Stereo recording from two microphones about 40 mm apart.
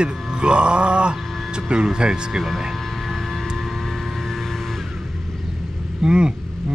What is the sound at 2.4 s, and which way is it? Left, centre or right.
Vehicle, centre.